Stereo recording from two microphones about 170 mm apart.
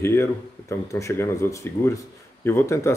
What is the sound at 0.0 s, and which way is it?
Speech, 15° left (ahead or behind).